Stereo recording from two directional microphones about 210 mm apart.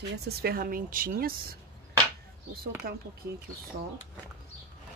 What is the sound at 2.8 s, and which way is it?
Speech, 45° right (ahead or behind).